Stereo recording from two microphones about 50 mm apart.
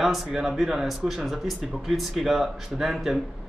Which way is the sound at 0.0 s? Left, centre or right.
Centre.